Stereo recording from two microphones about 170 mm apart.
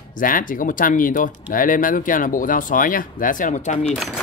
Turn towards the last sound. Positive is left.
turn(degrees=45)  # may be behind; listen again after turning